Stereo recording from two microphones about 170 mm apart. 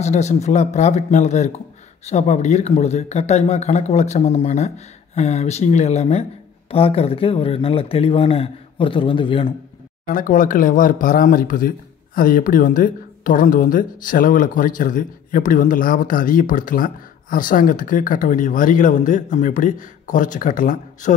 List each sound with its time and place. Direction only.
0.0 s speech: 40° left (ahead or behind)
10.0 s speech: 50° left (ahead or behind)